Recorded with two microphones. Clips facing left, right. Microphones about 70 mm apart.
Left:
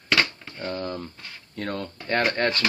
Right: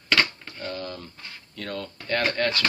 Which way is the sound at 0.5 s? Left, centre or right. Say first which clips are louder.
Left 4 dB; left.